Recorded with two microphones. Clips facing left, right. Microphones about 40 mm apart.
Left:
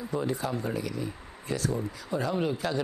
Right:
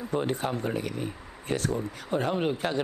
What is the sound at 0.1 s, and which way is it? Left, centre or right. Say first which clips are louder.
Speech: right 2 dB; right.